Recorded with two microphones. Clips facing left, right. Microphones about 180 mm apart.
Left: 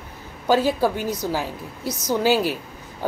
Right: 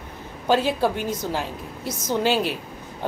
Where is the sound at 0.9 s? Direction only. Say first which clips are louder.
Left 1 dB; 50° right (ahead or behind).